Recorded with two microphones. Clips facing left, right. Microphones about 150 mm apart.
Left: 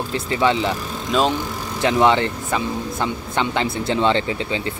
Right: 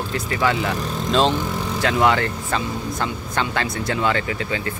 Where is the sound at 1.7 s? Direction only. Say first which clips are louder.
Left 3 dB; 20° left (ahead or behind).